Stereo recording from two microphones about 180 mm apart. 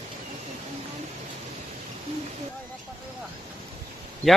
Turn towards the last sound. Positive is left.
turn(degrees=0)  # may be behind; listen again after turning